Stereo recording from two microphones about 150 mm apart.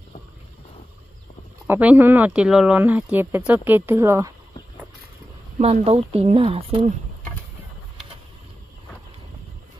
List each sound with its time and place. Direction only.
1.7 s speech: 10° right (ahead or behind)
5.6 s speech: 40° right (ahead or behind)